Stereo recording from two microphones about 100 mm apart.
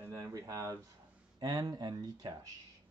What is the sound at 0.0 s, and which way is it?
Speech, 35° right (ahead or behind).